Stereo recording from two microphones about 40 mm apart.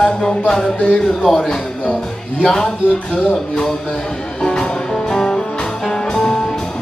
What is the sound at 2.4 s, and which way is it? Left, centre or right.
Music, centre.